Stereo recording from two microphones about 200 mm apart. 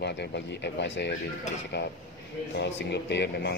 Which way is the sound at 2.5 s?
60° left (ahead or behind).